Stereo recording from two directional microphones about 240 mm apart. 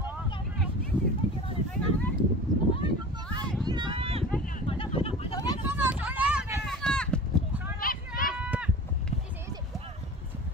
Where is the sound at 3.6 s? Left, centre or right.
Centre.